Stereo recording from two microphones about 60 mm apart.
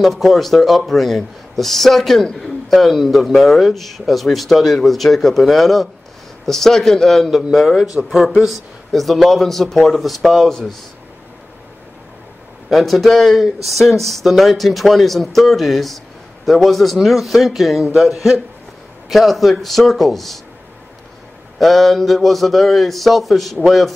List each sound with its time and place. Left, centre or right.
0.0 s speech: centre
12.6 s speech: centre
21.5 s speech: centre